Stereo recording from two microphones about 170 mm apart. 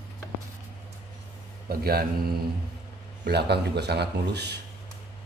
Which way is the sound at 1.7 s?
65° right (ahead or behind).